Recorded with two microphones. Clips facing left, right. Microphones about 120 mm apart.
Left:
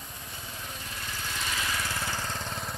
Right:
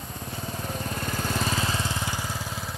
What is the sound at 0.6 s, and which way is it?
Lawn mower, 45° right (ahead or behind).